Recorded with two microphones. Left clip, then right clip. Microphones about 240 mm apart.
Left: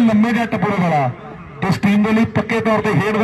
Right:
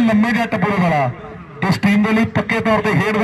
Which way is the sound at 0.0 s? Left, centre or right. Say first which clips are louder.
Even; right.